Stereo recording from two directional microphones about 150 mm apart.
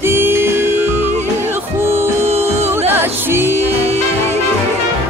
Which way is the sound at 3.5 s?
45° right (ahead or behind).